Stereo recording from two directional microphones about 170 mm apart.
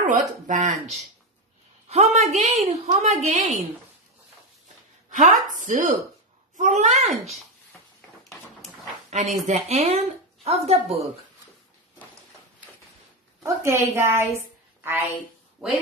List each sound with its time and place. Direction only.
0.0 s a woman's voice: 50° right (ahead or behind)
5.1 s a woman's voice: 50° right (ahead or behind)
9.1 s a woman's voice: 40° right (ahead or behind)
13.4 s a woman's voice: 15° right (ahead or behind)